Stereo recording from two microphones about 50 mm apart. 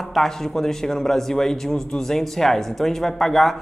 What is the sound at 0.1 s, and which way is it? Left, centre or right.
A man's voice, centre.